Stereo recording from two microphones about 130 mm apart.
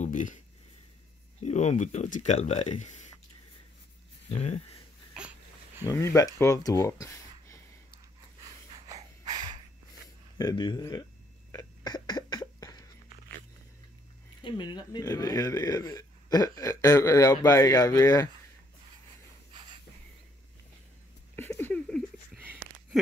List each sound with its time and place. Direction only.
0.0 s speech: 75° left (ahead or behind)
1.4 s speech: 60° left (ahead or behind)
4.4 s speech: 55° left (ahead or behind)
5.9 s speech: 25° left (ahead or behind)
8.5 s snort: 25° right (ahead or behind)
10.3 s speech: 35° left (ahead or behind)
11.5 s cough: 35° left (ahead or behind)
14.4 s speech: 35° left (ahead or behind)
19.5 s wheeze: 40° right (ahead or behind)
21.5 s a sound: 10° left (ahead or behind)